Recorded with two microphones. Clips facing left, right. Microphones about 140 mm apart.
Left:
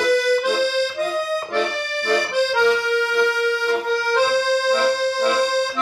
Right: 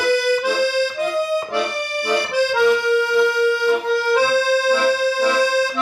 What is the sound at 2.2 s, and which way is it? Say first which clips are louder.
Accordion: right 2 dB; 10° right (ahead or behind).